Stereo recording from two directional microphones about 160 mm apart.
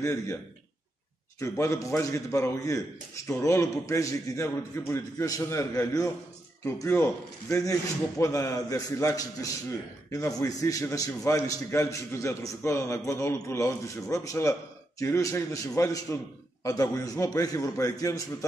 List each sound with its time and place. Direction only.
0.0 s a man's voice: 20° left (ahead or behind)
1.4 s a man's voice: 20° left (ahead or behind)